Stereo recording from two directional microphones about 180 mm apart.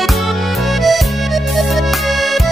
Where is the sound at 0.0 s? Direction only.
Centre (ahead or behind).